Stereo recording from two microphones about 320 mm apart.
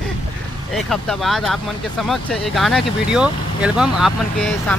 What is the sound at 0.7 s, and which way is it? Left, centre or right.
Speech, centre.